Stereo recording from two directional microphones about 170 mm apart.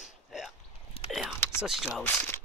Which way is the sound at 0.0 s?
Centre (ahead or behind).